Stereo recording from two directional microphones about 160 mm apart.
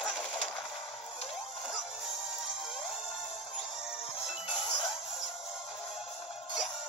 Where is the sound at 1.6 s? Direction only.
Centre (ahead or behind).